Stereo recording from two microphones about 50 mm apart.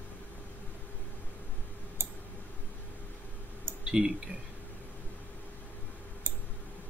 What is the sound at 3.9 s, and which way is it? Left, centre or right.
Speech, centre.